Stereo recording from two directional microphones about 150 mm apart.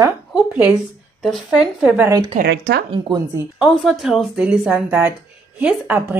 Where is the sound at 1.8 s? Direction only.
15° right (ahead or behind).